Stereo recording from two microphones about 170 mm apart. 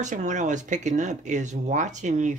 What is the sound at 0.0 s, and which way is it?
Speech, 45° right (ahead or behind).